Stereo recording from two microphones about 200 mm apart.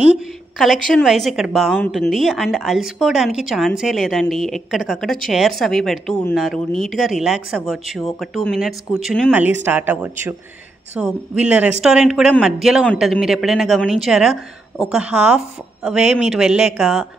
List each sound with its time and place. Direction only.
0.0 s a woman's voice: 5° right (ahead or behind)
9.3 s a woman's voice: 10° right (ahead or behind)